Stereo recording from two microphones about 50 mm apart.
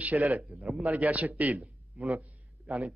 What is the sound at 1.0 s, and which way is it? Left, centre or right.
Speech, right.